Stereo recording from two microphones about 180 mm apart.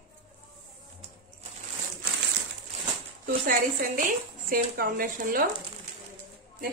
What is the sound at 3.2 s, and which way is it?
A woman's voice, 50° right (ahead or behind).